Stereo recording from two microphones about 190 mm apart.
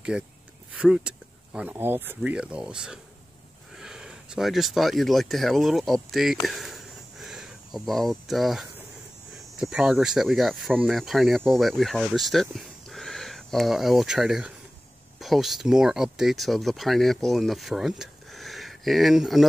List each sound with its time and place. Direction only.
0.1 s speech: 5° right (ahead or behind)
6.4 s a sound: centre (ahead or behind)
9.6 s speech: 5° right (ahead or behind)